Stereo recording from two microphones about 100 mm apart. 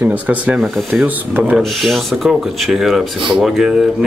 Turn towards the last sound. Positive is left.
turn(degrees=-5)  # may be behind; listen again after turning